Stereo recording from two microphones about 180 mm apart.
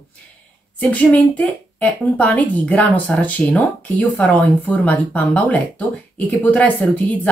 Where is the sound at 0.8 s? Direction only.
10° left (ahead or behind).